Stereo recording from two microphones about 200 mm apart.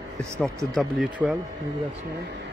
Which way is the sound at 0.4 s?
Centre (ahead or behind).